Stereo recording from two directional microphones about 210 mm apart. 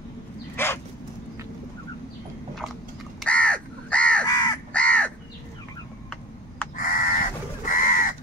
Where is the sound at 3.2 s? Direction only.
5° left (ahead or behind).